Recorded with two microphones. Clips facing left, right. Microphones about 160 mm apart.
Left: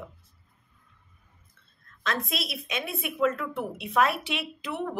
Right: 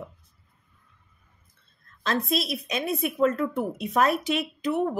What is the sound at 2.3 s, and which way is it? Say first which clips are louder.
A woman's voice: right 6 dB; 35° right (ahead or behind).